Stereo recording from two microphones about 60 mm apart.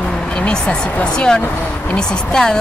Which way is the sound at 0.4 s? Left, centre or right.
Centre.